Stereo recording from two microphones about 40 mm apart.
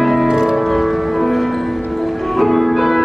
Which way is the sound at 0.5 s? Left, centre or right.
Centre.